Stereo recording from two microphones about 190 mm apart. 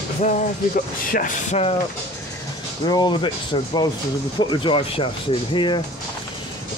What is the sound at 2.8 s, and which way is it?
Speech, 20° left (ahead or behind).